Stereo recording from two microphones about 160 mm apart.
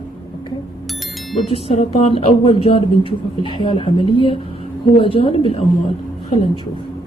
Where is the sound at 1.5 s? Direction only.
40° left (ahead or behind).